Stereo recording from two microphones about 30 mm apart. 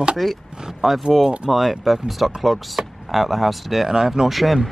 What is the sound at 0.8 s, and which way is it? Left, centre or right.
Speech, centre.